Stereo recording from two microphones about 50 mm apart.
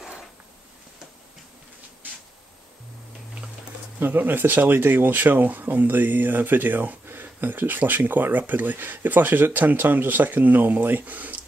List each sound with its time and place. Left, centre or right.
4.0 s speech: right